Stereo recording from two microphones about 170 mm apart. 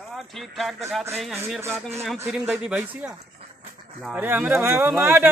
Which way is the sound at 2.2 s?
5° right (ahead or behind).